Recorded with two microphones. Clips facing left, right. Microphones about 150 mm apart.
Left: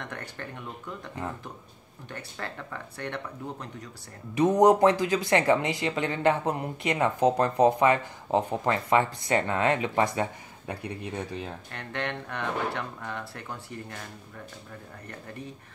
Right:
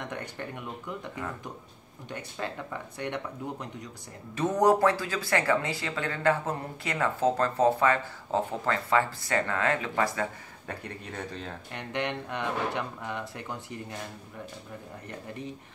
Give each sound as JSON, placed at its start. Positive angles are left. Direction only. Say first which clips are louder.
{"t": 0.0, "sound": "speech", "louder": "right 2 dB", "side_deg": -15}
{"t": 2.0, "sound": "speech", "louder": "right 2 dB", "side_deg": -20}
{"t": 4.4, "sound": "speech", "louder": "left 4 dB", "side_deg": 20}
{"t": 11.7, "sound": "speech", "louder": "right 2 dB", "side_deg": -15}